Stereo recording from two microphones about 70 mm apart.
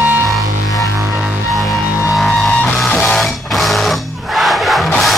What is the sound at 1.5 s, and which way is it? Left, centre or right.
Music, centre.